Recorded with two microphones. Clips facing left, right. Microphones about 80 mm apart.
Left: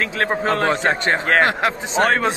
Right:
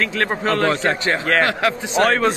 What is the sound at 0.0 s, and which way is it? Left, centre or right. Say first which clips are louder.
A man's voice: even; centre.